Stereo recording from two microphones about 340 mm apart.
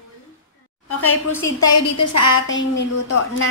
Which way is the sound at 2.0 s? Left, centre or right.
Left.